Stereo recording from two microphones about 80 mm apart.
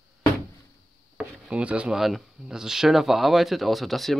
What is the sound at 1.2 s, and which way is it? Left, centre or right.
Speech, centre.